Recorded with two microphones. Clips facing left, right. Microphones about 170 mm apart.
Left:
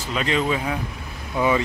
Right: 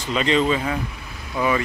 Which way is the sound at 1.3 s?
15° left (ahead or behind).